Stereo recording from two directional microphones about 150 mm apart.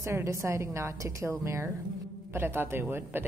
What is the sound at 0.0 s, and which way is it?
A woman's voice, 20° right (ahead or behind).